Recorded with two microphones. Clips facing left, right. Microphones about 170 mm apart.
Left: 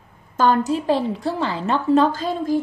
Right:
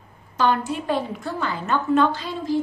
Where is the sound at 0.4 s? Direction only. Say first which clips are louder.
Left 4 dB; 40° left (ahead or behind).